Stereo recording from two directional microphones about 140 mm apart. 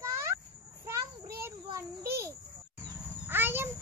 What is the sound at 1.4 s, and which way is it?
Child singing, 20° right (ahead or behind).